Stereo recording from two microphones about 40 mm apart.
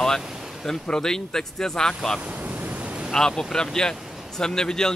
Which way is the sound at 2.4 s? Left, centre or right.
Right.